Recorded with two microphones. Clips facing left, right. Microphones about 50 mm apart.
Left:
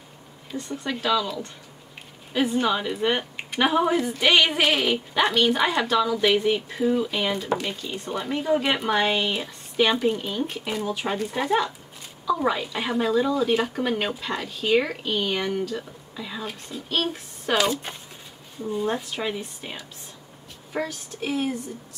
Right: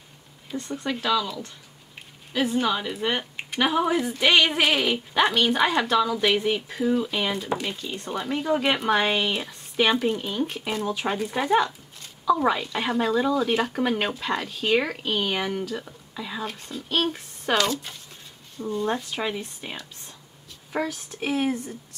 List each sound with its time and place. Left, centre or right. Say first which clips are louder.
0.5 s speech: right 1 dB; centre
17.9 s speech: left 4 dB; left
18.6 s speech: even; centre